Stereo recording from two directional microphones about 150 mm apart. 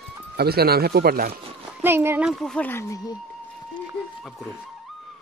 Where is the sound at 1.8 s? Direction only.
15° right (ahead or behind).